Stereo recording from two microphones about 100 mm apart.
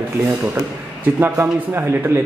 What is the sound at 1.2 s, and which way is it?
Speech, 25° right (ahead or behind).